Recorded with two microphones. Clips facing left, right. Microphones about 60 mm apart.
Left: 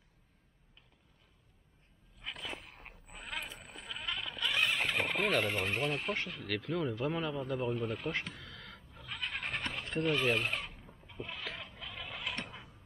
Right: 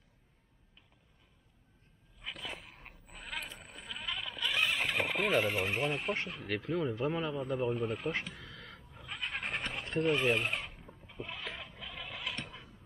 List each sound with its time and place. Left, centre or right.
2.1 s a sound: centre
9.3 s cat: centre
10.0 s fowl: centre